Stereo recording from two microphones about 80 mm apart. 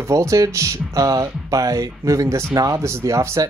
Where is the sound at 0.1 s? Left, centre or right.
Right.